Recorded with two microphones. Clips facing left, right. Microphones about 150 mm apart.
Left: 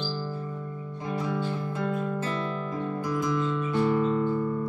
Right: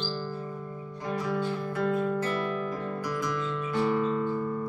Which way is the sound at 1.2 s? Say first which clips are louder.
Right 1 dB; 20° left (ahead or behind).